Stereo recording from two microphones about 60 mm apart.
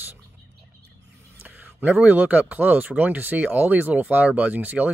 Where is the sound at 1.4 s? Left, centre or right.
Right.